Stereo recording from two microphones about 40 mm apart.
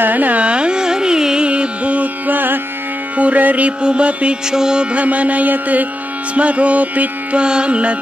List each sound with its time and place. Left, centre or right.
0.0 s carnatic music: right
0.5 s carnatic music: right
3.2 s music: right
3.8 s music: right
4.5 s carnatic music: centre
4.9 s music: right
7.4 s music: right